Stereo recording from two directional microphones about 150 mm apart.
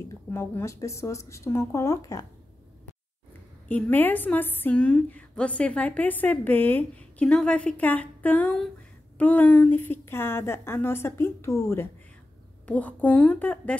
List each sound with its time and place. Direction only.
0.3 s speech: 15° left (ahead or behind)
3.6 s a woman's voice: 10° left (ahead or behind)